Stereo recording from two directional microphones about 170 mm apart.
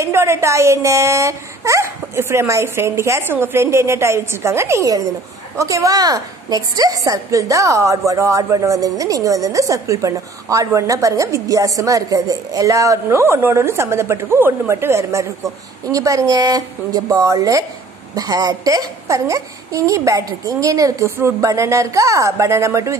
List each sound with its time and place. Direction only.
0.0 s a woman's voice: 15° right (ahead or behind)